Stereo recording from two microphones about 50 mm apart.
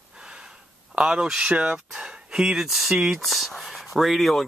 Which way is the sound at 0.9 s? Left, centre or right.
Centre.